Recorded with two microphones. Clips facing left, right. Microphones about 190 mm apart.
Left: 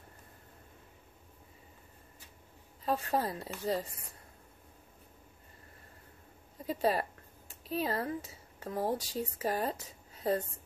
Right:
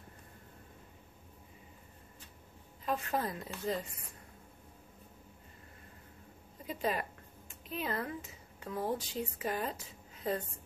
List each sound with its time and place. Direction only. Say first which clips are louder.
2.8 s a woman's voice: left 3 dB; 35° left (ahead or behind)
6.6 s speech: left 5 dB; 35° left (ahead or behind)